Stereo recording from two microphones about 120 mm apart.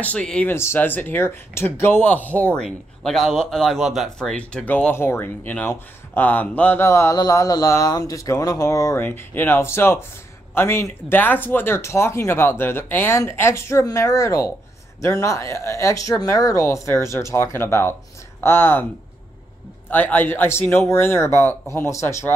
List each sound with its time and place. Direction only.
0.0 s speech: 10° left (ahead or behind)
19.9 s speech: 15° left (ahead or behind)